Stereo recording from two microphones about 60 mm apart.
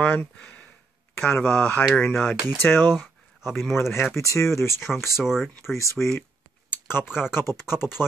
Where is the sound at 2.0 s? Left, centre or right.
Left.